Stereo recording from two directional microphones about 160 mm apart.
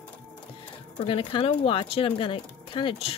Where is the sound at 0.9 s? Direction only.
35° left (ahead or behind).